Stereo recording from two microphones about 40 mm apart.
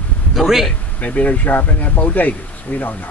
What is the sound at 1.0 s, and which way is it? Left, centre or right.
Speech, left.